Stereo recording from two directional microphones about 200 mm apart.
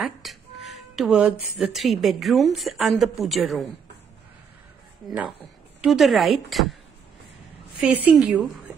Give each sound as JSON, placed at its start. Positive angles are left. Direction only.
{"t": 0.0, "sound": "music", "side_deg": 0}
{"t": 1.6, "sound": "a woman's voice", "side_deg": 0}
{"t": 5.8, "sound": "a woman's voice", "side_deg": 0}
{"t": 7.8, "sound": "a woman's voice", "side_deg": -10}